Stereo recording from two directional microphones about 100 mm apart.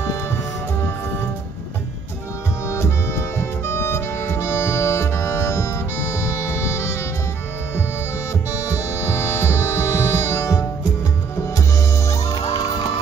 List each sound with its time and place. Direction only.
2.7 s music: 30° left (ahead or behind)
9.1 s music: 30° left (ahead or behind)
12.5 s music: 40° left (ahead or behind)